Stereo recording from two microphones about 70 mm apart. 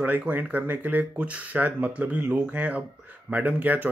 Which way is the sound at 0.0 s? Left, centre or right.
Right.